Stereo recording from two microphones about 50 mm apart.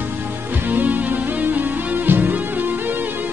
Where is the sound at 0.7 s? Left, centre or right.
Right.